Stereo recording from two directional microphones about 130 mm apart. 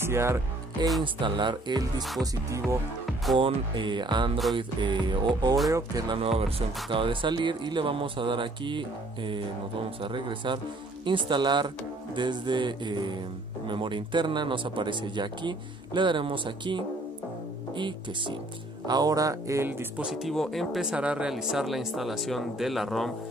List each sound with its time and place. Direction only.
0.0 s speech: 20° right (ahead or behind)
1.0 s speech: 40° right (ahead or behind)
3.3 s speech: 40° right (ahead or behind)
6.1 s speech: 50° right (ahead or behind); by 20.1 s 15° right (ahead or behind)
20.1 s speech: centre (ahead or behind)